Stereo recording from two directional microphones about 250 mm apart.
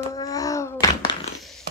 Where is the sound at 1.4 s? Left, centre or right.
Centre.